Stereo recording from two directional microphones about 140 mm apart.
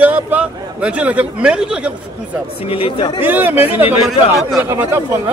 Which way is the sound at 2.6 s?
40° left (ahead or behind).